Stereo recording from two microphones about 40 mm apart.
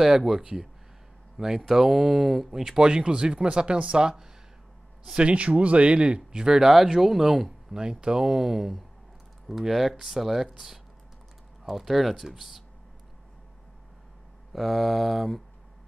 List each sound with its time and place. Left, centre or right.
0.0 s speech: centre
5.1 s speech: right; by 7.5 s centre
7.7 s speech: centre
14.5 s speech: centre